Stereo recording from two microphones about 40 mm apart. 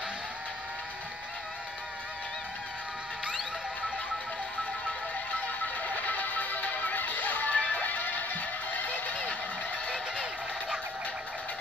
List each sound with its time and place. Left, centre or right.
5.3 s music: left